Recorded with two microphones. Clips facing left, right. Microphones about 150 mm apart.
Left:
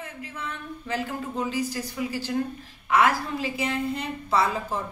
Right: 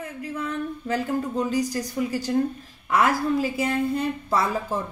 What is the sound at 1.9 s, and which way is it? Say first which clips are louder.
A woman's voice: right 4 dB; 45° right (ahead or behind).